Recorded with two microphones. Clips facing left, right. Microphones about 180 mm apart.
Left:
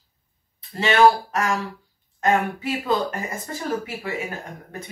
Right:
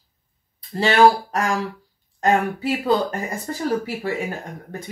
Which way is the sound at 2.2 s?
35° right (ahead or behind).